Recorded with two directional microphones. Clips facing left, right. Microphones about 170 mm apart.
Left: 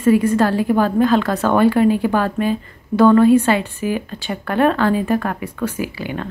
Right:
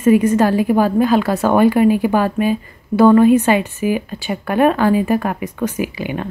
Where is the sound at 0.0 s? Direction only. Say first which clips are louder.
Right 2 dB; 15° right (ahead or behind).